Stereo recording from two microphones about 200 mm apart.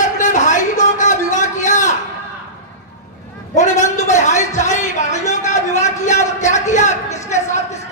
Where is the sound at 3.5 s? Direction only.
35° left (ahead or behind).